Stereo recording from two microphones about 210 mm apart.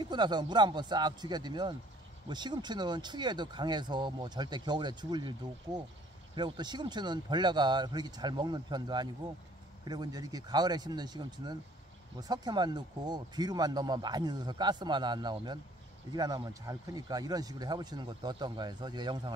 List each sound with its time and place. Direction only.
0.0 s speech: 20° right (ahead or behind)
6.3 s speech: 20° right (ahead or behind)